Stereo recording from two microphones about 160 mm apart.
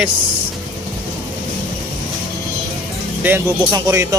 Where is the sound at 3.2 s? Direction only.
15° right (ahead or behind).